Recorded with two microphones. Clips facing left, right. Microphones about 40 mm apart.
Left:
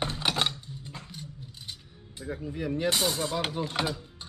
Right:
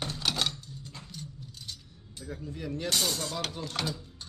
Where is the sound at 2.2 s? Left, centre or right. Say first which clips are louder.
Left 5 dB; left.